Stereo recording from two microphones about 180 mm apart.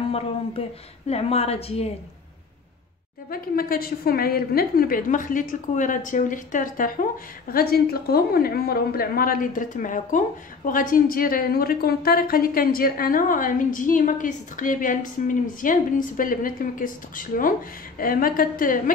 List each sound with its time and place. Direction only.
0.1 s speech: 35° left (ahead or behind)
3.3 s a woman's voice: 55° left (ahead or behind)